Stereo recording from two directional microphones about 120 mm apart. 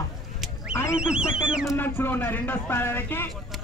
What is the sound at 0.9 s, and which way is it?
Speech, 5° right (ahead or behind).